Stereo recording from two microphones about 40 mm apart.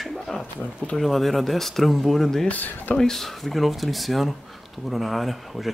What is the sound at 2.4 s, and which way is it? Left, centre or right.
Speech, left.